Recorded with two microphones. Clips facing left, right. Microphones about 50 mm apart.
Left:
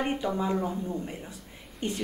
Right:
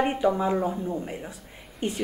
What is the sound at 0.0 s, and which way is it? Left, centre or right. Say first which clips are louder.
A woman's voice: right 5 dB; centre.